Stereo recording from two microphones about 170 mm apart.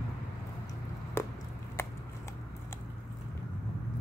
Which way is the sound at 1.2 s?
15° left (ahead or behind).